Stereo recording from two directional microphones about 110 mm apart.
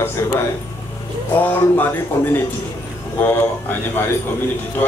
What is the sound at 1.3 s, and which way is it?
Speech, 15° left (ahead or behind).